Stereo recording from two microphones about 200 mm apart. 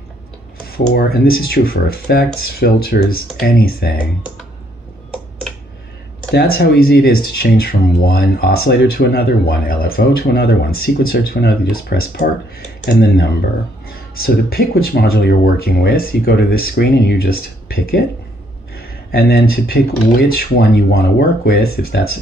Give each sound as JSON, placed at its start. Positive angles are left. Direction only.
{"t": 0.7, "sound": "speech", "side_deg": 50}
{"t": 6.3, "sound": "speech", "side_deg": 50}
{"t": 14.2, "sound": "speech", "side_deg": 50}
{"t": 18.8, "sound": "a sound", "side_deg": 50}
{"t": 19.5, "sound": "speech", "side_deg": 50}